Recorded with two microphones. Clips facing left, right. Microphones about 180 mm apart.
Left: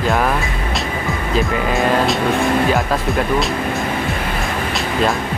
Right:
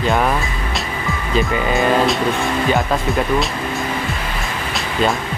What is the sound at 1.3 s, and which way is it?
Speech, centre (ahead or behind).